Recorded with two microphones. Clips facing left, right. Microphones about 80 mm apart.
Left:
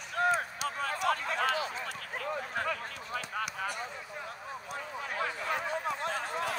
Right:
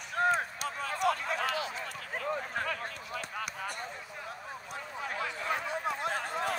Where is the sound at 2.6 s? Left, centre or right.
Left.